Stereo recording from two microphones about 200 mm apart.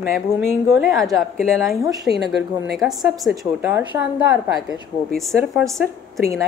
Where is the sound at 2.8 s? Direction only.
Centre (ahead or behind).